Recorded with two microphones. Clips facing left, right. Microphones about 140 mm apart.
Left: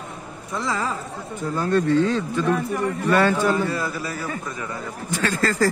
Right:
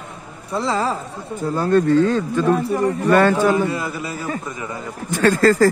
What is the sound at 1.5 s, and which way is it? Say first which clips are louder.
A man's voice: right 4 dB; 45° right (ahead or behind).